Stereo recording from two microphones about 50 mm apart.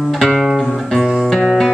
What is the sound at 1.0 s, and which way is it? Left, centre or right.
Music, centre.